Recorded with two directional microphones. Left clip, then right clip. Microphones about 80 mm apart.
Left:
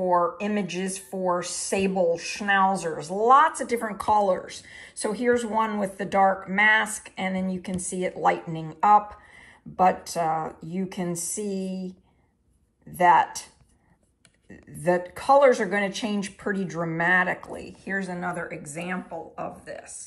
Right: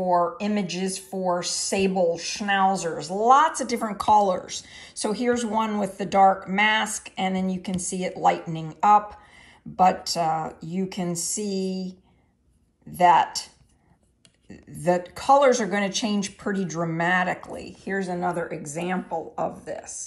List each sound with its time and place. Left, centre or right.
0.0 s speech: centre
12.9 s speech: centre
14.5 s speech: centre